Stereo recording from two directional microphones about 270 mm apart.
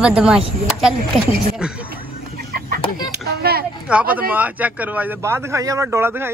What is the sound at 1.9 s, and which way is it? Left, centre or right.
Chicken, right.